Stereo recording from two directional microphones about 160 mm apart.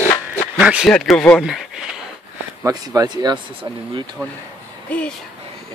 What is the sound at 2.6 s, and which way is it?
Speech, 20° right (ahead or behind).